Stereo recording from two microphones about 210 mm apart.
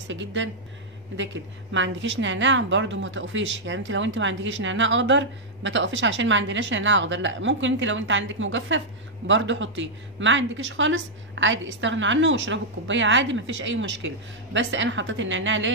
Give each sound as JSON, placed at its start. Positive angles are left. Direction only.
{"t": 0.1, "sound": "a woman's voice", "side_deg": -60}